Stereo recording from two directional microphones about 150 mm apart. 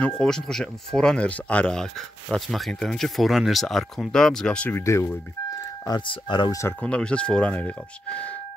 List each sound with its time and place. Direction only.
0.2 s speech: 5° left (ahead or behind)
5.9 s speech: 30° left (ahead or behind)
6.8 s speech: 5° left (ahead or behind)